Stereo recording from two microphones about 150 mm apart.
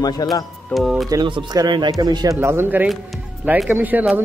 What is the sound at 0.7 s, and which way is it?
Speech, centre (ahead or behind).